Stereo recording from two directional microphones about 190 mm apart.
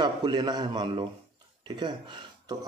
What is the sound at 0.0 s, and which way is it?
A man's voice, 20° right (ahead or behind).